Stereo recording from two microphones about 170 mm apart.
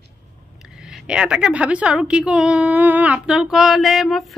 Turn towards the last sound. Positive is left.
turn(degrees=0)  # may be behind; listen again after turning